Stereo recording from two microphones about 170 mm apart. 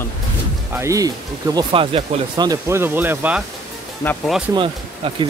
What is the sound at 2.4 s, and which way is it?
Speech, 20° right (ahead or behind).